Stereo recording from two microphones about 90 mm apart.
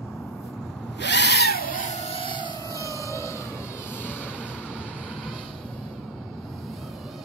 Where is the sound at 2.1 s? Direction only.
75° left (ahead or behind).